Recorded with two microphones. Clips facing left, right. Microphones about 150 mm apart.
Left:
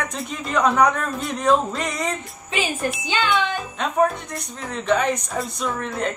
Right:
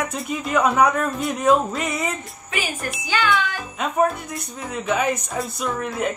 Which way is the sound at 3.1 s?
20° left (ahead or behind).